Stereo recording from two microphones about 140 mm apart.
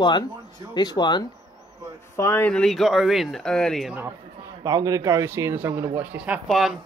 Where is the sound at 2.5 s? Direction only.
Centre (ahead or behind).